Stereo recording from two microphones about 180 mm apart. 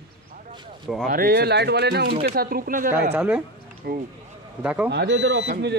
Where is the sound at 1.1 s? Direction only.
55° right (ahead or behind).